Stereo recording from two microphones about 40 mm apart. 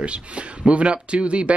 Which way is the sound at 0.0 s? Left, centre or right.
Right.